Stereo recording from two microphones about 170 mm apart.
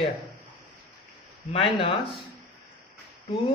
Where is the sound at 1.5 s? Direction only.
30° left (ahead or behind).